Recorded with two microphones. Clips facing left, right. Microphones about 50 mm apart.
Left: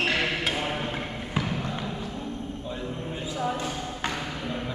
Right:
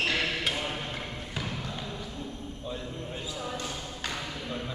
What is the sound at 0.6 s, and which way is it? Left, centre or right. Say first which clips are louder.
Basketball bounce: left 5 dB; left.